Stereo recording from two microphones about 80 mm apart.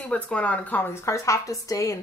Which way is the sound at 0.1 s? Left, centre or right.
Centre.